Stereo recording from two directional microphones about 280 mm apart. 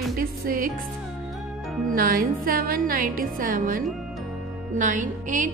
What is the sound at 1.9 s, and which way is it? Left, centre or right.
A woman's voice, right.